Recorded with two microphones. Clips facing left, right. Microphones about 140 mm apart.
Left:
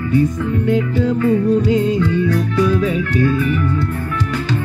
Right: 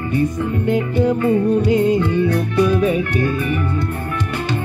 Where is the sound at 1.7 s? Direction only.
60° right (ahead or behind).